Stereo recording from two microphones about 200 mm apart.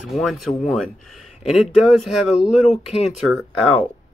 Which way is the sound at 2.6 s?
30° left (ahead or behind).